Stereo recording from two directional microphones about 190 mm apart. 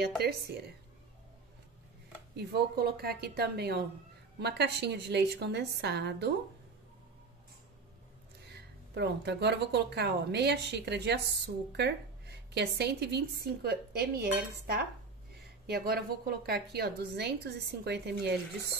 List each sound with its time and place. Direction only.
0.2 s speech: 55° right (ahead or behind)
2.3 s speech: 60° right (ahead or behind)
8.9 s speech: 65° right (ahead or behind)